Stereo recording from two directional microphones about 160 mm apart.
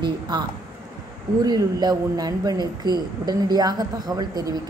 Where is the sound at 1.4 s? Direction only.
25° right (ahead or behind).